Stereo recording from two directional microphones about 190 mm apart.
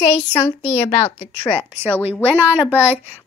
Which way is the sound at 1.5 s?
10° right (ahead or behind).